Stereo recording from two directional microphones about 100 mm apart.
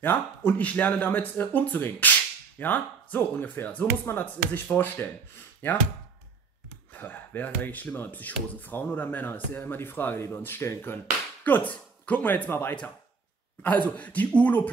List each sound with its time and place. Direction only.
0.0 s speech: 20° left (ahead or behind)
6.9 s speech: 15° left (ahead or behind)